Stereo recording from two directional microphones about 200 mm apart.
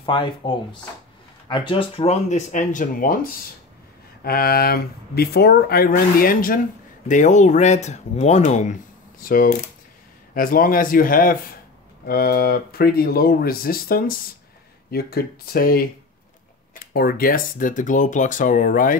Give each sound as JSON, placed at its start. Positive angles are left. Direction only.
{"t": 0.0, "sound": "speech", "side_deg": 25}
{"t": 4.2, "sound": "speech", "side_deg": 50}